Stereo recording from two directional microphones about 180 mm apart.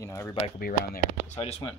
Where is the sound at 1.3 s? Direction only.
35° left (ahead or behind).